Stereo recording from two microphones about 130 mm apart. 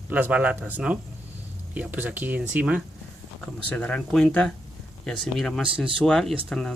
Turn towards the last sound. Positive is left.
turn(degrees=5)  # may be behind; listen again after turning